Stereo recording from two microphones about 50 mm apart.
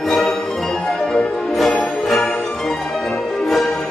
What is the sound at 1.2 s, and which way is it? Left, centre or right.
Music, left.